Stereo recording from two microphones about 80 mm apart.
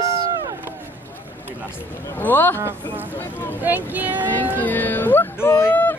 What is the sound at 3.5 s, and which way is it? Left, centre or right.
Speech, right.